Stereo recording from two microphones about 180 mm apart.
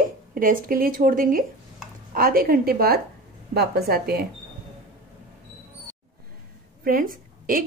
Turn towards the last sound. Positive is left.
turn(degrees=-50)  # may be behind; listen again after turning